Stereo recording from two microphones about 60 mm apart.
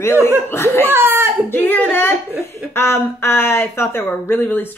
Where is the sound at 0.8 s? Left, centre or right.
Right.